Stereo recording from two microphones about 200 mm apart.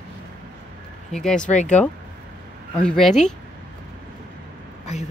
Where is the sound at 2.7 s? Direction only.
5° left (ahead or behind).